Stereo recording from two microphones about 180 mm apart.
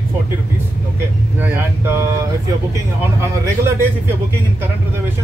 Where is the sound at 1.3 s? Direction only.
10° right (ahead or behind).